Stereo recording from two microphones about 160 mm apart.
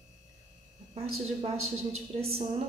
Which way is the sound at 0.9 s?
40° right (ahead or behind).